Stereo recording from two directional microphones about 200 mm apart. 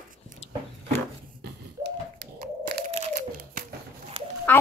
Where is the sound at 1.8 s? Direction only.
50° right (ahead or behind).